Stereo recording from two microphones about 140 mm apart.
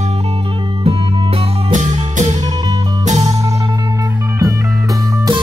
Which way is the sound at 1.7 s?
55° right (ahead or behind).